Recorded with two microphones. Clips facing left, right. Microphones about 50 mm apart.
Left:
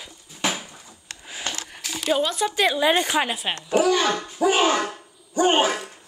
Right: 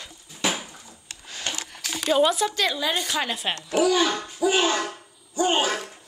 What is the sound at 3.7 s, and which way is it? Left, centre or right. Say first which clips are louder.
Speech: left 2 dB; left.